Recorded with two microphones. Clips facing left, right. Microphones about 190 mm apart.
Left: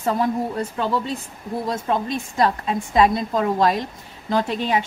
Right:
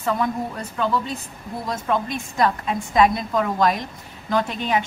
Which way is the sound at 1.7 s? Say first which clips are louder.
Even; 30° left (ahead or behind).